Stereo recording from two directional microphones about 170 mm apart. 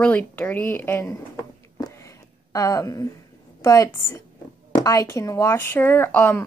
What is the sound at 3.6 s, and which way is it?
A woman's voice, 20° left (ahead or behind).